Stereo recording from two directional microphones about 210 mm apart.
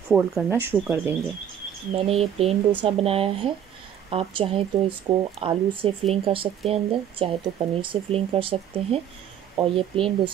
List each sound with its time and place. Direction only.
0.1 s speech: 5° right (ahead or behind)
2.0 s speech: 30° right (ahead or behind)